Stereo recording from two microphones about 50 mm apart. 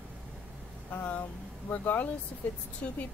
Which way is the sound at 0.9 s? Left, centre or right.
Left.